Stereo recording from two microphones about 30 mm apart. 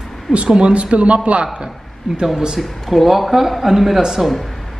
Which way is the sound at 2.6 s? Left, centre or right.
Centre.